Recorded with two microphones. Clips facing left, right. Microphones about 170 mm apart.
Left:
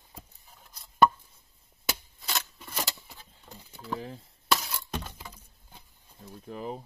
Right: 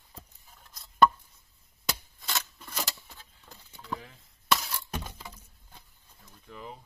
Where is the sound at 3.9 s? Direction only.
35° left (ahead or behind).